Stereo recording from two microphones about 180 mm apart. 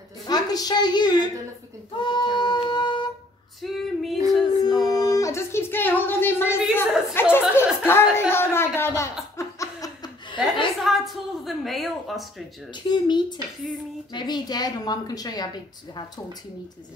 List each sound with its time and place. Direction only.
0.3 s a woman's voice: 20° left (ahead or behind)
2.0 s female singing: 25° left (ahead or behind)
3.6 s female singing: centre (ahead or behind)
4.6 s a sound: 20° left (ahead or behind)
7.2 s chuckle: 10° left (ahead or behind)
7.8 s a sound: 15° left (ahead or behind)
9.4 s laughter: 20° left (ahead or behind)
10.8 s speech: centre (ahead or behind)
12.7 s a woman's voice: 25° left (ahead or behind)